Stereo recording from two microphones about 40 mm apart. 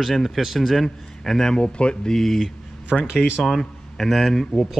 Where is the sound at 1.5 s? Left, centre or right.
Left.